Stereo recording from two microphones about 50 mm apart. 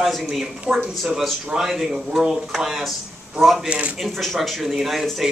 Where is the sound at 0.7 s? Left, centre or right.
Right.